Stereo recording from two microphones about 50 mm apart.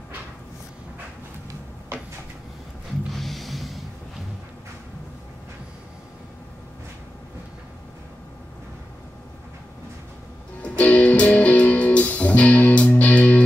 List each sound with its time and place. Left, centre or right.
3.1 s music: centre
10.6 s music: left